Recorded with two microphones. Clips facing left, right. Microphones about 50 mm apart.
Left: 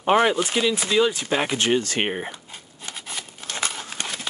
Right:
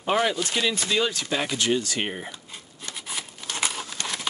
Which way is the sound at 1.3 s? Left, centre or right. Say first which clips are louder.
Left 3 dB; left.